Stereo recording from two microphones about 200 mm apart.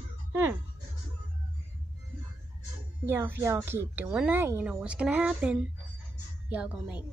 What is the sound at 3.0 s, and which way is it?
A woman's voice, 10° right (ahead or behind).